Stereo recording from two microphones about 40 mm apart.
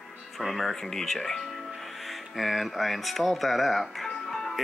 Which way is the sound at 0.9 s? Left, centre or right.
Centre.